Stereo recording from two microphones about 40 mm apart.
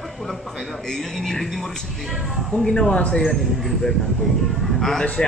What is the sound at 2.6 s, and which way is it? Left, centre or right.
Speech, centre.